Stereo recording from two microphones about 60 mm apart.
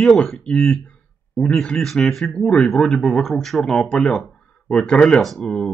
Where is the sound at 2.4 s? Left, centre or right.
Centre.